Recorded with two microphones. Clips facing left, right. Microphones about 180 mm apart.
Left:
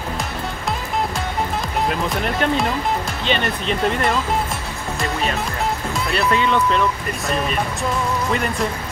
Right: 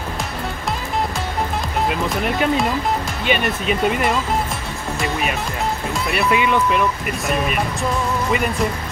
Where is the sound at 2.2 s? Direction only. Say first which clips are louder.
Right 2 dB; 5° right (ahead or behind).